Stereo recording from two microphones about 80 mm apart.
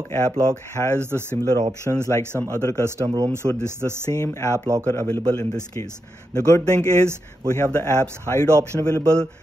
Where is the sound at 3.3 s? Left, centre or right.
Right.